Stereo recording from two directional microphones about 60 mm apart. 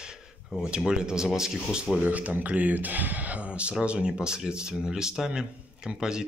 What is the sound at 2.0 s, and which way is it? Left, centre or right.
Speech, right.